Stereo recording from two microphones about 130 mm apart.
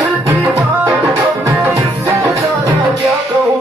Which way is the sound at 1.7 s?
25° right (ahead or behind).